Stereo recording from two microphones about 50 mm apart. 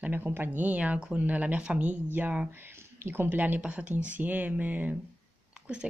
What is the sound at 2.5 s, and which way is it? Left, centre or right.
Speech, right.